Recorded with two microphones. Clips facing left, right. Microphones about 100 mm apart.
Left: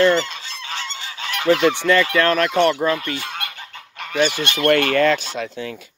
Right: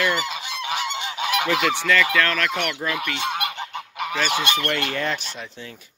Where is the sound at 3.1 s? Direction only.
20° right (ahead or behind).